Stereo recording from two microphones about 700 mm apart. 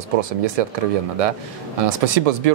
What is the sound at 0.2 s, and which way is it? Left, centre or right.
Speech, right.